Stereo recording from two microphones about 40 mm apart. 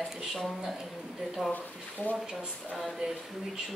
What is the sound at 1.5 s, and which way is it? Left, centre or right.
Speech, left.